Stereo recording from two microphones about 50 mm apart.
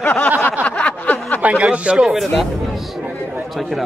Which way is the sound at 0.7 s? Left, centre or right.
Left.